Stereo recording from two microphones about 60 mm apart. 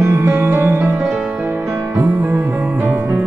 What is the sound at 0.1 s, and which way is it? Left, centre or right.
Music, right.